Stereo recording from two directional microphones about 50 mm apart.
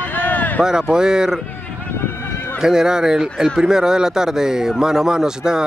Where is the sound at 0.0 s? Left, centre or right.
Left.